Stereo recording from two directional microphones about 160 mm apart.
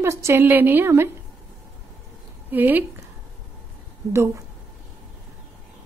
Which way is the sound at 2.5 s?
10° right (ahead or behind).